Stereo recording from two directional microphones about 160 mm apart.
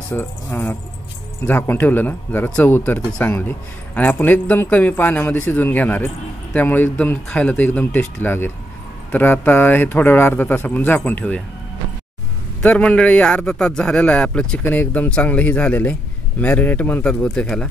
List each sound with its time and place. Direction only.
0.1 s a man's voice: 15° left (ahead or behind)
12.6 s a man's voice: 5° left (ahead or behind)